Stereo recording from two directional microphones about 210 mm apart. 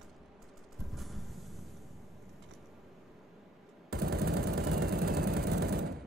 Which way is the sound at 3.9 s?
45° right (ahead or behind).